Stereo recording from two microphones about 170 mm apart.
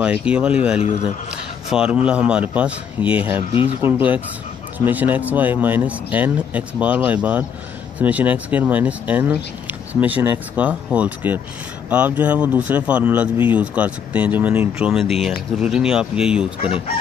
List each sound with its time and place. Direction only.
0.0 s speech: 5° right (ahead or behind)
16.6 s speech: 30° left (ahead or behind)